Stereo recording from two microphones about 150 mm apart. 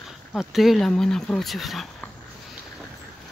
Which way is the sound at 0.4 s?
Centre (ahead or behind).